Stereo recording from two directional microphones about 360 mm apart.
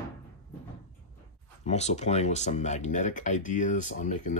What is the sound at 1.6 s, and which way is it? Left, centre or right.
Speech, centre.